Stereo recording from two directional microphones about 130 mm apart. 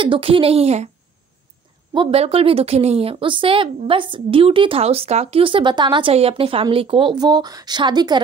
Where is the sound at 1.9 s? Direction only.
40° right (ahead or behind).